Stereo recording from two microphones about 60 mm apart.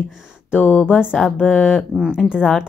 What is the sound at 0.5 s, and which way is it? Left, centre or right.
Speech, left.